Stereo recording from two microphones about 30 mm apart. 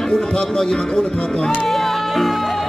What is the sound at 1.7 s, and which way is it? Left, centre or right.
Music, centre.